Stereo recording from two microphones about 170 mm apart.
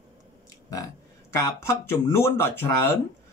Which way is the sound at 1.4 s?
15° left (ahead or behind).